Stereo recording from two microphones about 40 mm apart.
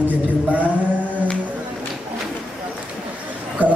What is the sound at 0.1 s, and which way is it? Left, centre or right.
Chant, right.